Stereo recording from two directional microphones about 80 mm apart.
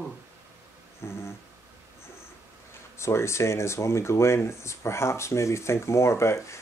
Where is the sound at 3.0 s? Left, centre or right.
Left.